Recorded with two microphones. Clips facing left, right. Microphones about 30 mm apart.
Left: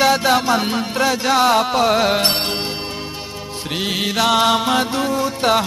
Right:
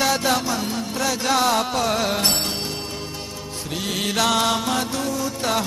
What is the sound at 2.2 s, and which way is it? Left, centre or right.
Music, left.